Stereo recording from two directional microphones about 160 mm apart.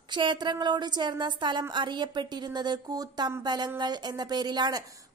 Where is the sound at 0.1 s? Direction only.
30° right (ahead or behind).